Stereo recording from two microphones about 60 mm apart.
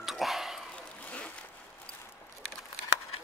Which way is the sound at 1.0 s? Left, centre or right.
Left.